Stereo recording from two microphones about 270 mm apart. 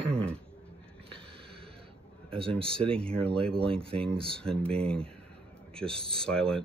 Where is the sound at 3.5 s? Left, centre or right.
Centre.